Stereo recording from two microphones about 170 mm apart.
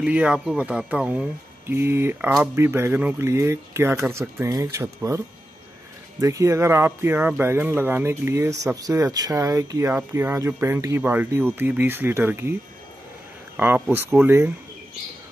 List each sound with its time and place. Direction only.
0.0 s speech: 5° right (ahead or behind)
6.2 s speech: 20° right (ahead or behind)
13.6 s speech: 10° right (ahead or behind)